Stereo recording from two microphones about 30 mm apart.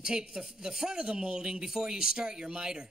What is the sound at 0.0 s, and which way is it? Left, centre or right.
Speech, right.